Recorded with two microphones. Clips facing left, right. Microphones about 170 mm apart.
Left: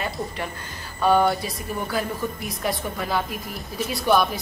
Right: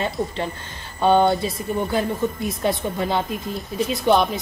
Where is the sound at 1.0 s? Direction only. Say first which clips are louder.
Right 3 dB; 25° right (ahead or behind).